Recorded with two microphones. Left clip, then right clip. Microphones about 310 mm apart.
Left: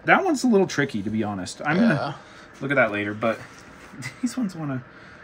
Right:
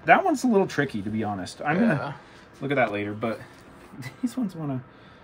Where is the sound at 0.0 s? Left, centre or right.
Centre.